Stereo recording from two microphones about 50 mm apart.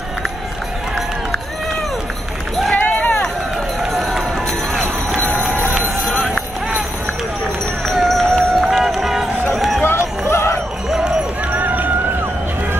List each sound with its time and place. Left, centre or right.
2.7 s run: left
3.9 s run: centre
5.1 s a sound: right
7.8 s music: centre
9.5 s run: centre
9.8 s run: left
11.5 s run: right